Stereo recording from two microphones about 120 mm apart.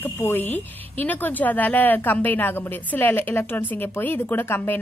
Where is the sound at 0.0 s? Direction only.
15° left (ahead or behind).